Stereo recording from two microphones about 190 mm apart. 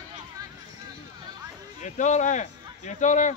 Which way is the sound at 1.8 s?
40° left (ahead or behind).